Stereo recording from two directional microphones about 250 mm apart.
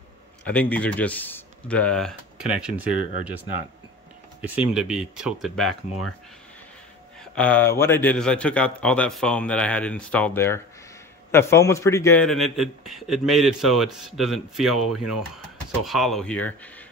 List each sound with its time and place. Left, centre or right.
0.5 s a man's voice: centre
2.9 s speech: right
4.4 s a man's voice: centre
5.9 s speech: left
7.3 s a man's voice: centre